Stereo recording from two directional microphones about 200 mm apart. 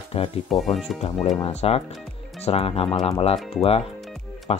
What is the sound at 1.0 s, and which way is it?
Speech, 30° left (ahead or behind).